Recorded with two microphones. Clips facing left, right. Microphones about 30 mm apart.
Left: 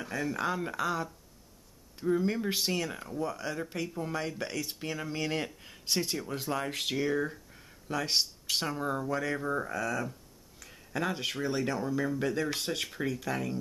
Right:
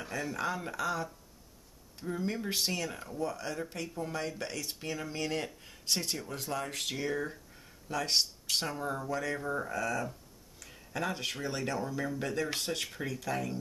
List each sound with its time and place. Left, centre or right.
0.0 s speech: centre
7.0 s speech: centre